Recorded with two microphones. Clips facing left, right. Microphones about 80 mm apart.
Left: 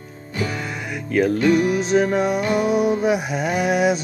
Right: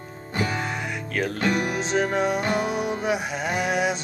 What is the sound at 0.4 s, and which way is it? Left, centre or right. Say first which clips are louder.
Music: left 1 dB; right.